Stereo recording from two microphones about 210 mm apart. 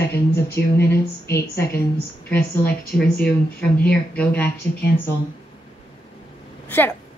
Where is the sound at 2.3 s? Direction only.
5° left (ahead or behind).